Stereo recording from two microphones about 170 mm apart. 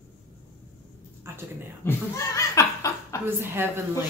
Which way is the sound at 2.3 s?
20° left (ahead or behind).